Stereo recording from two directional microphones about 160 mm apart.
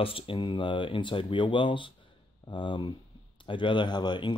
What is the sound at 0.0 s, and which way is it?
A man's voice, 35° left (ahead or behind).